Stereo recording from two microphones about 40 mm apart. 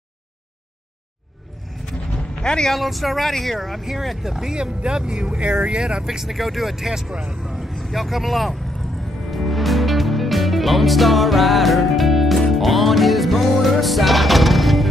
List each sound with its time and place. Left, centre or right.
2.4 s speech: left
2.7 s speech: centre; by 6.0 s right
6.0 s speech: centre
7.4 s vehicle: centre
7.7 s speech: centre
9.3 s music: centre